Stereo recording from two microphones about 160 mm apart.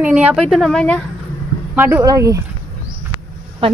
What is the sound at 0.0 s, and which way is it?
A woman's voice, 5° right (ahead or behind).